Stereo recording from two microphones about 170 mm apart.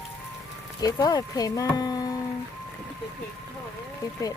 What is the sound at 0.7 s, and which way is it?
Speech, 20° left (ahead or behind).